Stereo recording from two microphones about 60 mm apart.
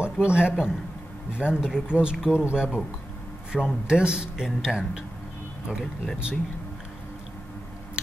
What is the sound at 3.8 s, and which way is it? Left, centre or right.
Speech, centre.